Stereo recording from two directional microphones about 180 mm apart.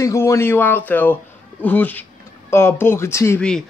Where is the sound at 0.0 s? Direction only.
15° left (ahead or behind).